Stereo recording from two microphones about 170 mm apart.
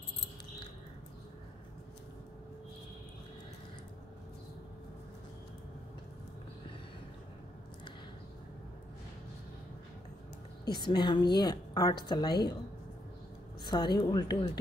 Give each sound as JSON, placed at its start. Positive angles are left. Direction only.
{"t": 10.6, "sound": "a woman's voice", "side_deg": 25}
{"t": 13.7, "sound": "a woman's voice", "side_deg": 25}